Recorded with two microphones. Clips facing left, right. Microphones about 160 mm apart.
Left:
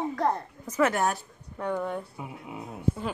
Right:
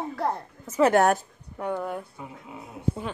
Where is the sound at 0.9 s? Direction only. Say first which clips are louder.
Right 7 dB; 70° right (ahead or behind).